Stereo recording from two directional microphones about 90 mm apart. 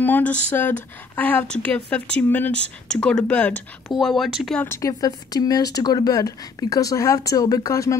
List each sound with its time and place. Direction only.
0.0 s speech: 20° left (ahead or behind)
3.9 s speech: centre (ahead or behind)
4.6 s a woman's voice: 30° left (ahead or behind)
5.0 s speech: 45° left (ahead or behind)